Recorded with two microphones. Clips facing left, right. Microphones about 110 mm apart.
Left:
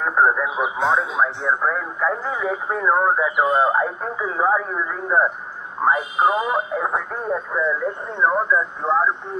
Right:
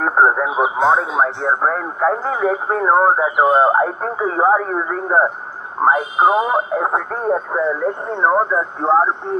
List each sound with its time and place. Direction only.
0.0 s speech: 40° right (ahead or behind)
3.8 s speech: 50° right (ahead or behind)
4.4 s speech: 40° right (ahead or behind)